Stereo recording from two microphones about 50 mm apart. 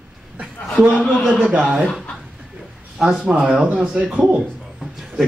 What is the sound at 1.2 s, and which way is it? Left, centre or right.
Speech, centre.